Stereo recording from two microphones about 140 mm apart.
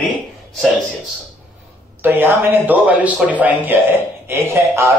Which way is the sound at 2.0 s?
15° right (ahead or behind).